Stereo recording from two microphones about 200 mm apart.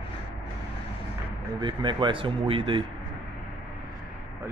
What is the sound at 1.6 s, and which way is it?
A man's voice, 25° right (ahead or behind).